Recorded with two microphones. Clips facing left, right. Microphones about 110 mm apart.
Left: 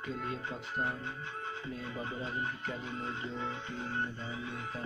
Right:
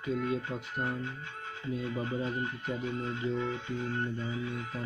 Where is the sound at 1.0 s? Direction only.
40° left (ahead or behind).